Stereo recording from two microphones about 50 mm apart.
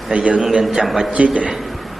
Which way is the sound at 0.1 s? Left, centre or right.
Right.